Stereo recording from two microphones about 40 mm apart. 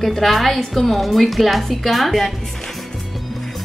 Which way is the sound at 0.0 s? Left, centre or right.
Centre.